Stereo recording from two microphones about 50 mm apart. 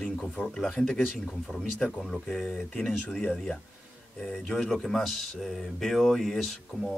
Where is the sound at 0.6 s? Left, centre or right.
Centre.